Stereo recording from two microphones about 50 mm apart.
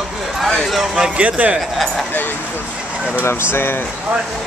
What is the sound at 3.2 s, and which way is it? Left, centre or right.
Speech, left.